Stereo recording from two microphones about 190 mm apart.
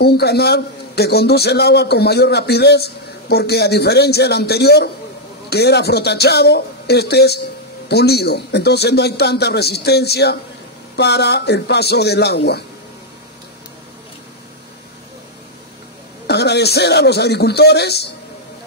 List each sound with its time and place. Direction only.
0.0 s a man's voice: 60° left (ahead or behind)
16.3 s a man's voice: 60° left (ahead or behind)